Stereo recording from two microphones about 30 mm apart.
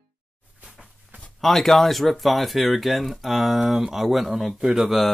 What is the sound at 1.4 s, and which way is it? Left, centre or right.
Speech, centre.